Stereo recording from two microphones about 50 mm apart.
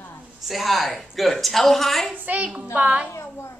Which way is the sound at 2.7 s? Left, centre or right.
Right.